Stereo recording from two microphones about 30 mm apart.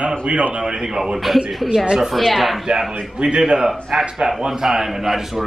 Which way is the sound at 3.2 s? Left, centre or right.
Right.